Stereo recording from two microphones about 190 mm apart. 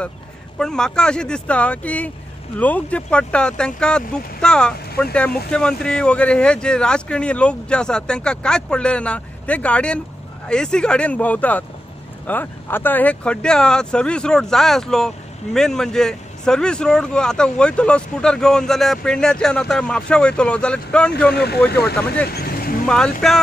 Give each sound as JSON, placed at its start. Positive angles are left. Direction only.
{"t": 0.6, "sound": "speech", "side_deg": 5}
{"t": 21.3, "sound": "speech", "side_deg": 60}
{"t": 21.9, "sound": "speech", "side_deg": 5}
{"t": 22.3, "sound": "vehicle", "side_deg": 55}
{"t": 22.8, "sound": "speech", "side_deg": 5}